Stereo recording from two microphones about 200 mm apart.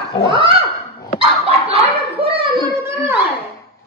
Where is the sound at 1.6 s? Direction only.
30° right (ahead or behind).